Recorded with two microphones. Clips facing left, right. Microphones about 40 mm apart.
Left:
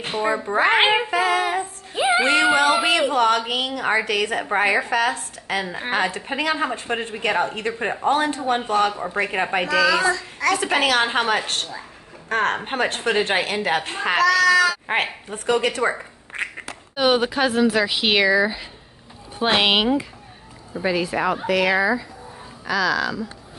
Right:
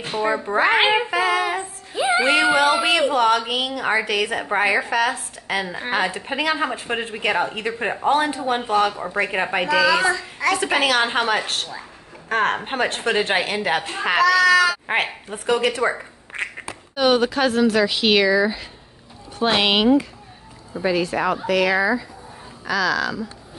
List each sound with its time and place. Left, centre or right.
0.2 s speech: centre
2.0 s music: centre
2.2 s a woman's voice: centre
16.9 s a woman's voice: centre